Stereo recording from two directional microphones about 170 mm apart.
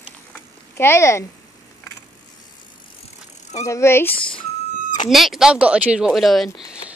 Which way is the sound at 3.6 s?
15° left (ahead or behind).